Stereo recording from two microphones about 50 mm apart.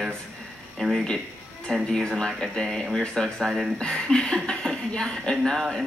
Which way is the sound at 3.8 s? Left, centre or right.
Centre.